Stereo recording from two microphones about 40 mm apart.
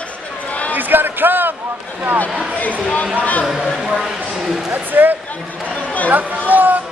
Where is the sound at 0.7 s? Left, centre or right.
Right.